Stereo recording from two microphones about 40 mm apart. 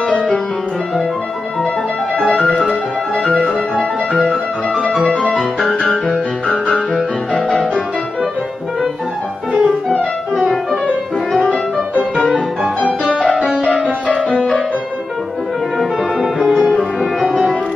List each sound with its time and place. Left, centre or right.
2.3 s music: left
5.0 s music: left
9.5 s music: right
13.4 s music: right